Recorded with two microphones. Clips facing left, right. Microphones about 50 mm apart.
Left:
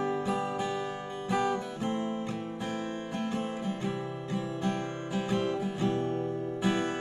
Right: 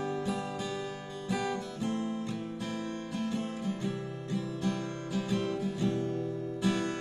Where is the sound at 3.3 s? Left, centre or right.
Left.